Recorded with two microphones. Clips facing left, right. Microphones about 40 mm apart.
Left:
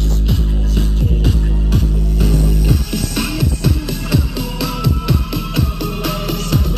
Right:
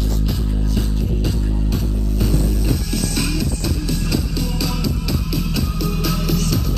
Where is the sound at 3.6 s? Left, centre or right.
Left.